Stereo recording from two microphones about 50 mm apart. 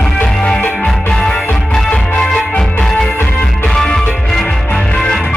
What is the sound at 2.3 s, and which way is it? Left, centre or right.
Music, centre.